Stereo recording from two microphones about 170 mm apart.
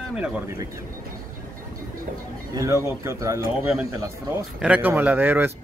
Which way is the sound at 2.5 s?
20° right (ahead or behind).